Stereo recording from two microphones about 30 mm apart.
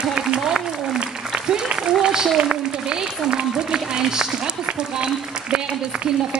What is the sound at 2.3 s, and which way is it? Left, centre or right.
Speech, right.